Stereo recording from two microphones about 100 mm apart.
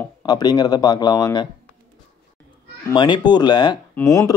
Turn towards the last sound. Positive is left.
turn(degrees=35)  # may be behind; listen again after turning